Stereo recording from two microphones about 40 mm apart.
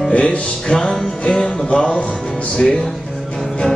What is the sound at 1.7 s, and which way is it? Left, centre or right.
Music, left.